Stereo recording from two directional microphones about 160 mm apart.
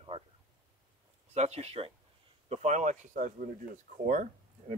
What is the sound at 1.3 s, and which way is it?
Speech, 45° right (ahead or behind).